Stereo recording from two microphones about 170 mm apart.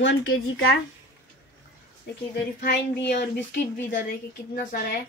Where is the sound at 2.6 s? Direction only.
85° left.